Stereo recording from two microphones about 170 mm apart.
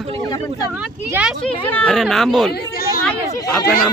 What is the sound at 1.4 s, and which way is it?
Speech, 5° left (ahead or behind).